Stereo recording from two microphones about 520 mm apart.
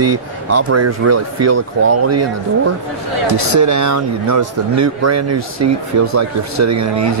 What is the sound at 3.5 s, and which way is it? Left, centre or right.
Speech, right.